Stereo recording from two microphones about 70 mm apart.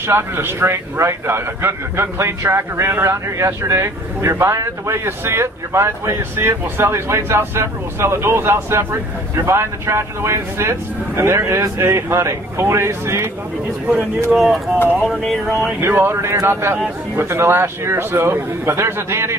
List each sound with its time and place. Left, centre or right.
0.0 s a man's voice: right
14.3 s speech: centre
15.8 s a man's voice: right